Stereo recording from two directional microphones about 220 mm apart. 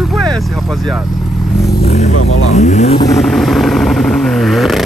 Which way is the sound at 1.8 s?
30° left (ahead or behind).